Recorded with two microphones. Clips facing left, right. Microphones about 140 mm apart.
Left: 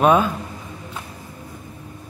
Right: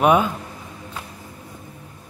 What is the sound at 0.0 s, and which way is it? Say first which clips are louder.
Speech: left 1 dB; 15° right (ahead or behind).